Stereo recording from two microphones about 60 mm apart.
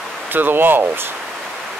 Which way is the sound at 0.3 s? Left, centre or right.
Right.